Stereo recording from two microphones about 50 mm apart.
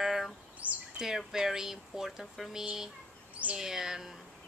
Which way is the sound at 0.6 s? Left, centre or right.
Right.